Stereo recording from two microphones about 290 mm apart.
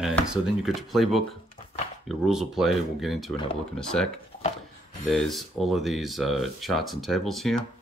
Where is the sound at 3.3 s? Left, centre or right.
Centre.